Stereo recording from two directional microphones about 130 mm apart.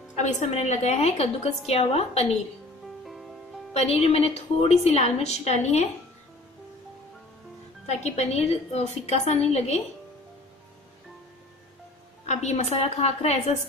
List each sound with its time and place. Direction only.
0.2 s a woman's voice: 60° left (ahead or behind)
3.1 s music: centre (ahead or behind)
3.7 s a woman's voice: 55° left (ahead or behind)
7.8 s a woman's voice: 55° left (ahead or behind)
12.3 s a woman's voice: 60° left (ahead or behind)